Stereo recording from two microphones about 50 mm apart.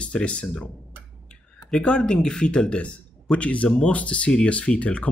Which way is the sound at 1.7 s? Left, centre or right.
Centre.